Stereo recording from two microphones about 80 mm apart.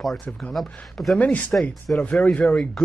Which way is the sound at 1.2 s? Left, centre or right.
Left.